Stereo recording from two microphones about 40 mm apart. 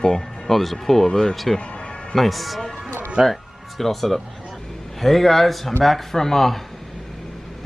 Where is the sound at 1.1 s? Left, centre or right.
Left.